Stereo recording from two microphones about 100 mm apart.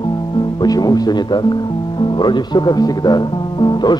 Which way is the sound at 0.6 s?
40° left (ahead or behind).